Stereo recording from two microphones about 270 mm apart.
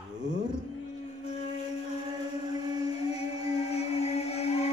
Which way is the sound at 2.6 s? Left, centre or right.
Centre.